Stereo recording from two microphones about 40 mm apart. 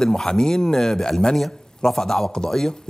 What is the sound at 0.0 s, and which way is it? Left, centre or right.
Speech, centre.